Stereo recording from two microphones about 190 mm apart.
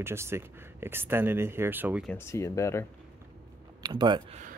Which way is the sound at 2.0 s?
15° left (ahead or behind).